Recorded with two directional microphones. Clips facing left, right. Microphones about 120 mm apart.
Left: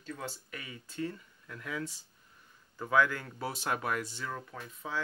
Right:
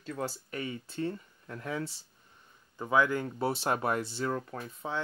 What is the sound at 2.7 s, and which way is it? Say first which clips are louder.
Speech: right 1 dB; 20° right (ahead or behind).